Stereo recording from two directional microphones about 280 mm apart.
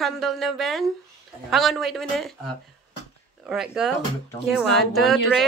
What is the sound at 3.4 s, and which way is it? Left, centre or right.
A woman's voice, centre.